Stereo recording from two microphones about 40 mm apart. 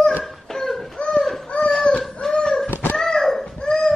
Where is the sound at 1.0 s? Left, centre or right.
Left.